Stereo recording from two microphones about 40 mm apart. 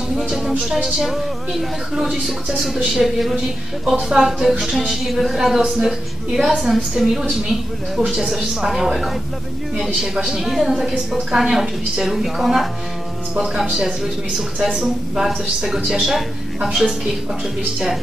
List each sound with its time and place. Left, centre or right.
0.9 s a woman's voice: centre
10.1 s a woman's voice: centre
13.7 s speech: right
14.7 s a woman's voice: centre